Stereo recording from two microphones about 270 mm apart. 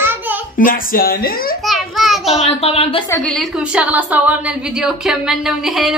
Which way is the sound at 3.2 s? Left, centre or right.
Centre.